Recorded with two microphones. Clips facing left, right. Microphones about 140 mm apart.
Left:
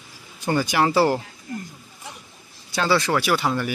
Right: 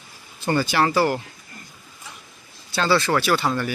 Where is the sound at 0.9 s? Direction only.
30° left (ahead or behind).